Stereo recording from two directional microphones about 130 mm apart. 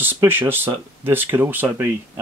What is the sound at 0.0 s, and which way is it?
Speech, 15° right (ahead or behind).